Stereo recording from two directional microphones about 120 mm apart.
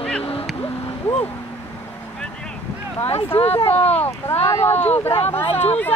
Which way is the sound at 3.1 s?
55° left (ahead or behind).